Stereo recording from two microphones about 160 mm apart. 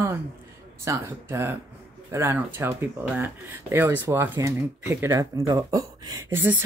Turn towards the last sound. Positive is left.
turn(degrees=-15)  # may be behind; listen again after turning